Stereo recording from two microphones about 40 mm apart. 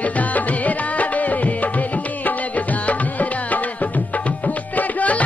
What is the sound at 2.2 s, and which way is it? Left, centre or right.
Music, left.